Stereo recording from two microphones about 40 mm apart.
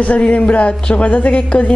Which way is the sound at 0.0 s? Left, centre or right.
Left.